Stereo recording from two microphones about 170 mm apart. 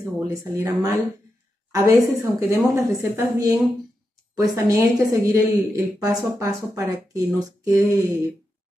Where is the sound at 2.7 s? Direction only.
20° right (ahead or behind).